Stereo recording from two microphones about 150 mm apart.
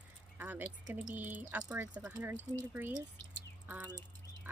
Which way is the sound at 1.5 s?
10° right (ahead or behind).